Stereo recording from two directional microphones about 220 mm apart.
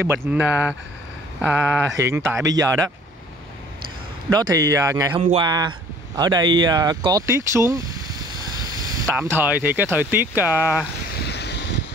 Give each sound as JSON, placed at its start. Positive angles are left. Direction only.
{"t": 0.0, "sound": "speech", "side_deg": -10}
{"t": 4.3, "sound": "speech", "side_deg": -15}
{"t": 9.0, "sound": "speech", "side_deg": -10}
{"t": 11.1, "sound": "wind", "side_deg": 50}